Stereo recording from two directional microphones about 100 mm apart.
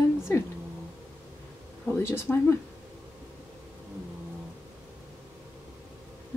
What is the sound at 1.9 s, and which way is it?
Speech, 25° left (ahead or behind).